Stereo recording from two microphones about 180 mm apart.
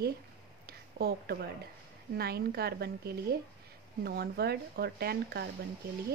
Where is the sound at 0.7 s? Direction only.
60° right (ahead or behind).